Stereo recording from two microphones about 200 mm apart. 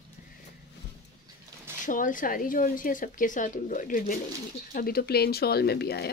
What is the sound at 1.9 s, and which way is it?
Speech, 40° left (ahead or behind).